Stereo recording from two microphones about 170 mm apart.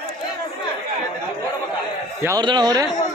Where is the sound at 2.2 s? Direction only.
25° right (ahead or behind).